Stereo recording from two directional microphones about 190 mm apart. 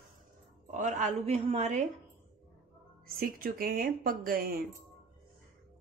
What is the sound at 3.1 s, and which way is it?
Speech, 50° right (ahead or behind).